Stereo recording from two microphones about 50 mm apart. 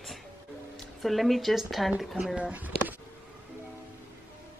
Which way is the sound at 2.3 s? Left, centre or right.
Right.